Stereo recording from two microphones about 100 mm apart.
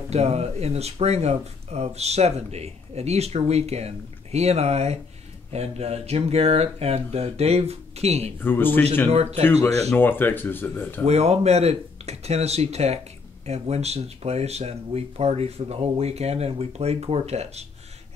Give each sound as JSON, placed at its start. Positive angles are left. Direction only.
{"t": 0.1, "sound": "speech", "side_deg": -90}
{"t": 8.4, "sound": "speech", "side_deg": 20}
{"t": 9.1, "sound": "speech", "side_deg": -90}
{"t": 9.4, "sound": "speech", "side_deg": 25}
{"t": 11.1, "sound": "speech", "side_deg": -90}